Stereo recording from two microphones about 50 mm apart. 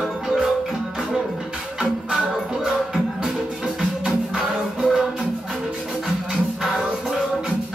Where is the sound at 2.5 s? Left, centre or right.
Centre.